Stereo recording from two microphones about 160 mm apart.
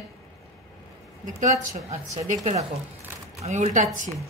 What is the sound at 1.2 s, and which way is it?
Speech, 50° right (ahead or behind).